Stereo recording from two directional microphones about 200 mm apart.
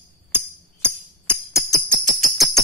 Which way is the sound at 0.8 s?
10° left (ahead or behind).